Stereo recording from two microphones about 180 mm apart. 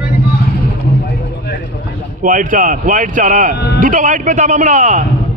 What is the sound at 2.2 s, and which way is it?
A man's voice, 50° right (ahead or behind).